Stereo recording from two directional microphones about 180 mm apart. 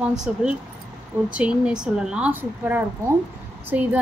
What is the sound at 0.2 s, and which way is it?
A woman's voice, 5° right (ahead or behind).